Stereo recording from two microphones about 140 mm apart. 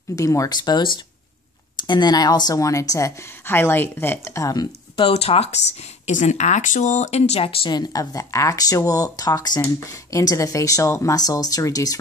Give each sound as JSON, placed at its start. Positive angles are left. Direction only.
{"t": 0.1, "sound": "a woman's voice", "side_deg": 20}
{"t": 4.9, "sound": "a woman's voice", "side_deg": 45}